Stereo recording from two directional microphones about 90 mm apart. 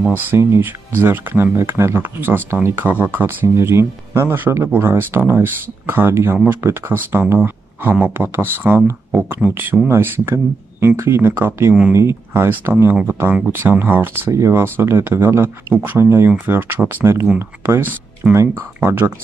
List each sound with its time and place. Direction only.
0.5 s speech: 25° right (ahead or behind)
18.8 s speech: 20° right (ahead or behind)